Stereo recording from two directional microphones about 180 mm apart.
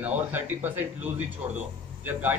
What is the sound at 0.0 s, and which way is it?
A man's voice, 10° right (ahead or behind).